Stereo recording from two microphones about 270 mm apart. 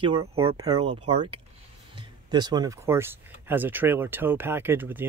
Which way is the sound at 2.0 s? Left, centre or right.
Centre.